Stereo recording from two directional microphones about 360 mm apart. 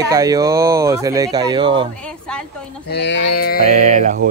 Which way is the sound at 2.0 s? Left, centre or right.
Centre.